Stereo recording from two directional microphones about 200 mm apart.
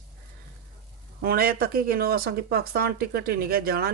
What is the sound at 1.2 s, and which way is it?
Speech, 50° right (ahead or behind).